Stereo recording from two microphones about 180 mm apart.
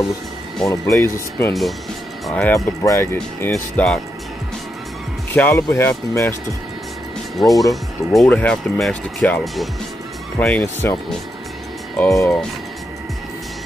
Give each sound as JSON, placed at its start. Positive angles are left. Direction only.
{"t": 0.7, "sound": "speech", "side_deg": 15}
{"t": 5.3, "sound": "speech", "side_deg": 10}
{"t": 7.3, "sound": "speech", "side_deg": 0}